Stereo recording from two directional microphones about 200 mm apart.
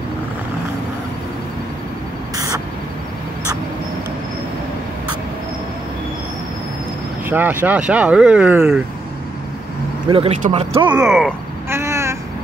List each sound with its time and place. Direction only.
7.2 s speech: 10° right (ahead or behind)
10.0 s speech: 25° right (ahead or behind)
10.9 s speech: 5° right (ahead or behind)
11.7 s a sound: 15° right (ahead or behind)